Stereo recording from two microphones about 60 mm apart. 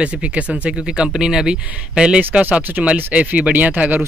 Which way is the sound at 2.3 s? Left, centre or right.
Right.